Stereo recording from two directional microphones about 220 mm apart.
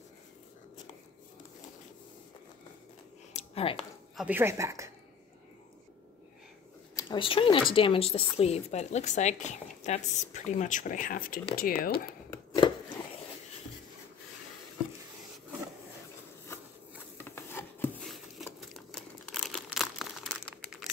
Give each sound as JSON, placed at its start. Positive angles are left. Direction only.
{"t": 3.3, "sound": "a sound", "side_deg": 25}
{"t": 4.2, "sound": "a woman's voice", "side_deg": -10}
{"t": 7.0, "sound": "speech", "side_deg": 20}
{"t": 12.1, "sound": "chopping", "side_deg": 20}
{"t": 16.5, "sound": "a sound", "side_deg": 10}
{"t": 18.6, "sound": "crumpling", "side_deg": 0}